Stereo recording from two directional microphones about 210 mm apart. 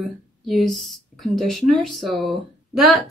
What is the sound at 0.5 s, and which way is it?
Speech, centre (ahead or behind).